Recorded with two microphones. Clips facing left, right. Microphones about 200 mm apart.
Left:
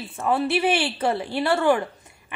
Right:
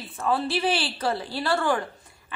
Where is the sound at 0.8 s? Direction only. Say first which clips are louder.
Left 4 dB; 25° left (ahead or behind).